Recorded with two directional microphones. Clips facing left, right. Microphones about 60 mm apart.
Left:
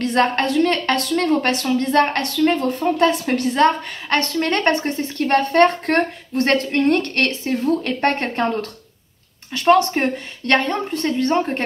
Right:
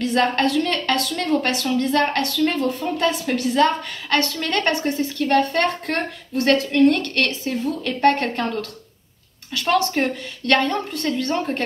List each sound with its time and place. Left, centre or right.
0.0 s a woman's voice: left